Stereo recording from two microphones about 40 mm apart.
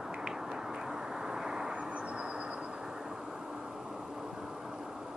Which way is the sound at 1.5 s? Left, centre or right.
Centre.